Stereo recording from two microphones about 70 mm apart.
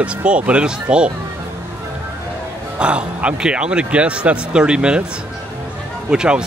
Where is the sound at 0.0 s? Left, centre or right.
Centre.